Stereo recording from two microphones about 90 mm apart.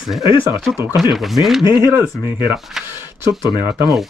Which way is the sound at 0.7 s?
35° right (ahead or behind).